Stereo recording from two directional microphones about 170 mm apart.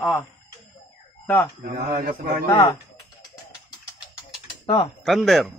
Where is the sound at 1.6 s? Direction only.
50° right (ahead or behind).